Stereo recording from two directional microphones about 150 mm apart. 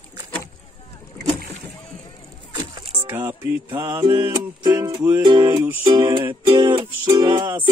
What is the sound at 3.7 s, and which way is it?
Mantra, 30° right (ahead or behind).